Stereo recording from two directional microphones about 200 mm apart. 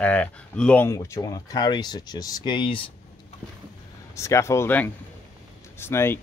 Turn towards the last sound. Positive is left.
turn(degrees=10)  # may be behind; listen again after turning